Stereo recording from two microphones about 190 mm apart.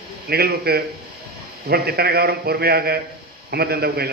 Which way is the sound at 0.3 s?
55° right (ahead or behind).